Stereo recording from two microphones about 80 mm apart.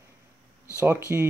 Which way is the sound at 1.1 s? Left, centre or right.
Right.